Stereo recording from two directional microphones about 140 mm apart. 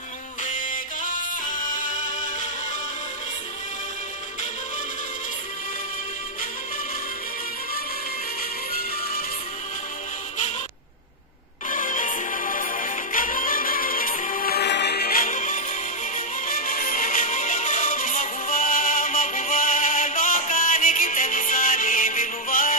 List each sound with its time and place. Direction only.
0.5 s music: 70° left (ahead or behind)
11.7 s music: 70° left (ahead or behind)
16.4 s music: 75° left (ahead or behind)